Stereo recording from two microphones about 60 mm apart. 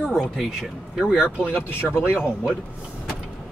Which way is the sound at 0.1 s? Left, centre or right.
Centre.